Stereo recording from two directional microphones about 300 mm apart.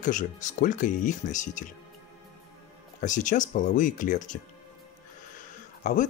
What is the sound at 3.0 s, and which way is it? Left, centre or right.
Speech, left.